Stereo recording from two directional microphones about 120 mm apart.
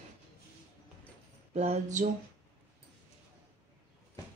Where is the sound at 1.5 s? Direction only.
65° right (ahead or behind).